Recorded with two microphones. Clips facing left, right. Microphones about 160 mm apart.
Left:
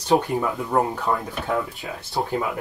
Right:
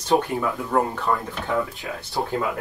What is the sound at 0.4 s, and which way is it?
Speech, 15° left (ahead or behind).